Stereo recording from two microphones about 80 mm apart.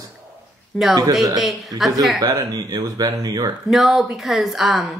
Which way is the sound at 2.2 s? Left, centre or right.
Right.